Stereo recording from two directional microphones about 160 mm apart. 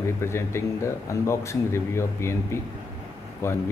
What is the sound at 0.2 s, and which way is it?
Speech, 15° left (ahead or behind).